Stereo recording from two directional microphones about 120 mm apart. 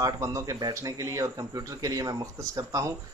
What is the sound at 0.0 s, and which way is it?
Speech, 25° right (ahead or behind).